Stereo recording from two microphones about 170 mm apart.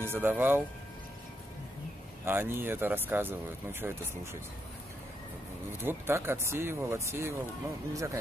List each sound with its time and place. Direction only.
0.0 s speech: 15° right (ahead or behind)
2.2 s speech: 15° right (ahead or behind)
5.8 s speech: 15° right (ahead or behind)